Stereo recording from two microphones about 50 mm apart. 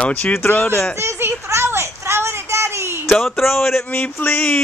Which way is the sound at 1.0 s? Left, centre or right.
Right.